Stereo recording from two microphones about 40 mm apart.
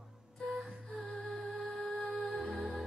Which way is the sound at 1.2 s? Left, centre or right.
Centre.